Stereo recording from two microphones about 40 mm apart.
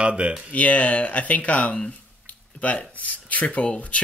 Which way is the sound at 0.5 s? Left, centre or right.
Left.